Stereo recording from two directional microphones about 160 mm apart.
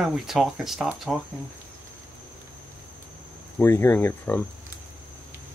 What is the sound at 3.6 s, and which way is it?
Speech, 10° left (ahead or behind).